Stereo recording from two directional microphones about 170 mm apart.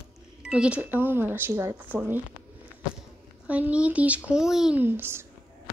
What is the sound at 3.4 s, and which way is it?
Speech, 10° right (ahead or behind).